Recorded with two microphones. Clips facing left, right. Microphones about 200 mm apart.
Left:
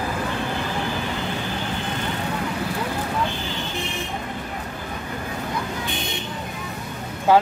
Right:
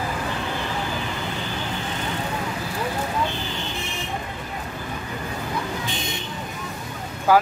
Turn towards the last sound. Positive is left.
turn(degrees=25)  # may be behind; listen again after turning